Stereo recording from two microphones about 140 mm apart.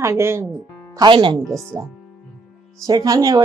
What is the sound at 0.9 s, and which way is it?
Speech, 35° right (ahead or behind).